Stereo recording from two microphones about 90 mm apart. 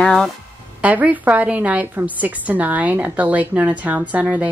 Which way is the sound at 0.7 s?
15° right (ahead or behind).